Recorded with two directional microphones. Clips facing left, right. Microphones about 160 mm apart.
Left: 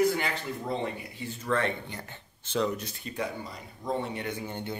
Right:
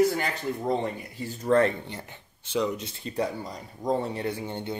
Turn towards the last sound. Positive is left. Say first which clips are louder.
# right 4 dB
turn(degrees=-25)  # may be behind; listen again after turning